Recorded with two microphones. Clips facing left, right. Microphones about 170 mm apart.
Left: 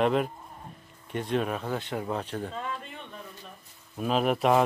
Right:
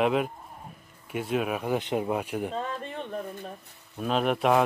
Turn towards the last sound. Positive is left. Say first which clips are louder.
# even
turn(degrees=0)  # may be behind; listen again after turning